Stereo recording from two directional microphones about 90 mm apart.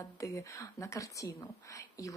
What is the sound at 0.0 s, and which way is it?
Speech, 35° left (ahead or behind).